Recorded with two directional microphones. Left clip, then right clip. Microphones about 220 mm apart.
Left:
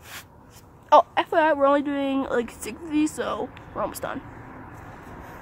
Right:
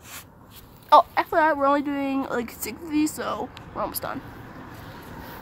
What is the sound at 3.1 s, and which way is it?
Speech, 5° left (ahead or behind).